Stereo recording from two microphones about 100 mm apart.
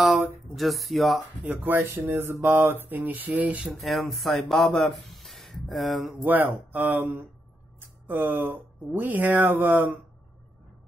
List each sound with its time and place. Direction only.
0.6 s speech: centre (ahead or behind)
1.4 s speech: 15° right (ahead or behind)
3.8 s speech: centre (ahead or behind)
6.2 s speech: 20° right (ahead or behind)